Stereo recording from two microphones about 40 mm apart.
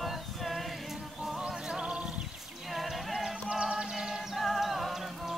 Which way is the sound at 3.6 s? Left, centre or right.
Right.